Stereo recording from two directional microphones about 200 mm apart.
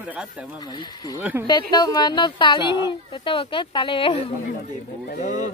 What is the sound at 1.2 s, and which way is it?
Speech, 10° right (ahead or behind).